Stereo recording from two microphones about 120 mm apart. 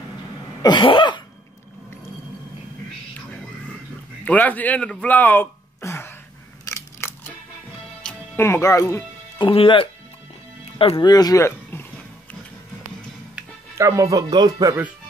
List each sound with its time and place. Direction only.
0.6 s cough: 40° left (ahead or behind)
4.2 s speech: 15° left (ahead or behind)
6.7 s scissors: 20° left (ahead or behind)
8.0 s music: 10° left (ahead or behind)
8.4 s speech: 20° left (ahead or behind)
9.4 s speech: 45° left (ahead or behind)
10.6 s music: 55° left (ahead or behind)
11.0 s speech: 35° left (ahead or behind)
13.7 s speech: 25° right (ahead or behind)